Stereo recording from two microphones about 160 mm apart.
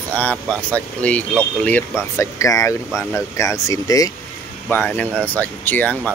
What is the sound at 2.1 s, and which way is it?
Speech, 20° left (ahead or behind).